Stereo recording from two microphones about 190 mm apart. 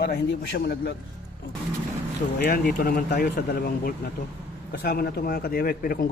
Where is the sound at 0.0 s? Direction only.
60° left (ahead or behind).